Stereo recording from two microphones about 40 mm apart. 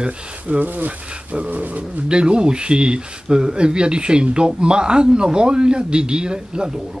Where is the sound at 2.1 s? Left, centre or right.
Right.